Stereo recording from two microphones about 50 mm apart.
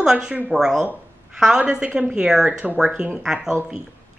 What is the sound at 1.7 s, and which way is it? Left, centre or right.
A woman's voice, right.